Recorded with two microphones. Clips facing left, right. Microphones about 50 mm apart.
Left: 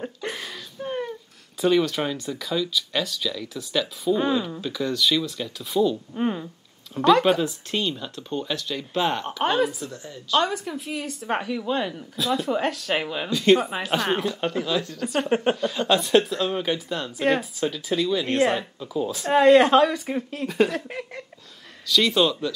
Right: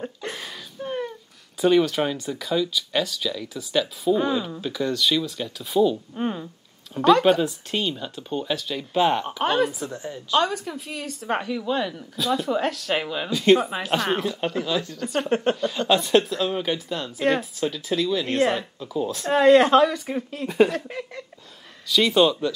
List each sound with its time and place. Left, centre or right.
0.0 s a sound: centre
1.6 s a woman's voice: centre
6.1 s a woman's voice: centre
9.8 s a woman's voice: right
10.4 s a woman's voice: centre
13.3 s a woman's voice: centre
20.9 s a sound: centre
21.8 s speech: centre